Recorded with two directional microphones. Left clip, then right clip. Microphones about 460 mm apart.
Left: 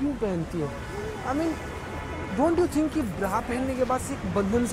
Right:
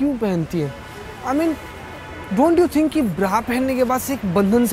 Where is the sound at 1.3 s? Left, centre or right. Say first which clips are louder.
Right 9 dB; right.